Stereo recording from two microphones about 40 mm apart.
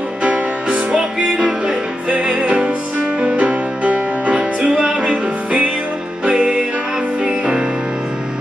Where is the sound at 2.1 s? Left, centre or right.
Right.